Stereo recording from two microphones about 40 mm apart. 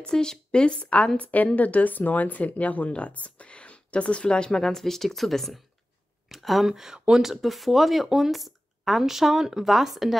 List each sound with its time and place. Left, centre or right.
0.0 s a woman's voice: centre
6.2 s a sound: centre
6.7 s speech: centre